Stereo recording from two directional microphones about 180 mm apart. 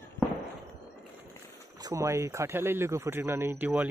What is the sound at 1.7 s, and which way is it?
Speech, 20° right (ahead or behind).